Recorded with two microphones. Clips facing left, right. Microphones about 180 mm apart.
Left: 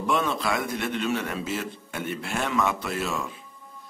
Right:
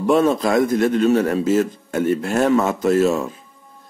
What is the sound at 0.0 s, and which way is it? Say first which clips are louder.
A man's voice: right 10 dB; 40° right (ahead or behind).